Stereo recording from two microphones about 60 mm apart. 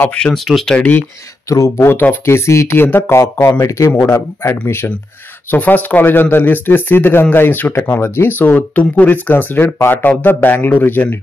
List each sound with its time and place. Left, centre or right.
0.0 s speech: left
0.3 s speech: centre
0.7 s speech: left
1.5 s speech: left
1.9 s speech: left
2.7 s speech: left
3.6 s speech: left
4.1 s speech: left
5.5 s speech: left